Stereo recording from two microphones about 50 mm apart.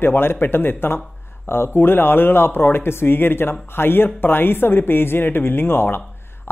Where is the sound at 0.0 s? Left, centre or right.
Left.